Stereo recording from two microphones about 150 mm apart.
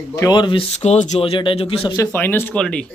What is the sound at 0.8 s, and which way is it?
Speech, 50° left (ahead or behind).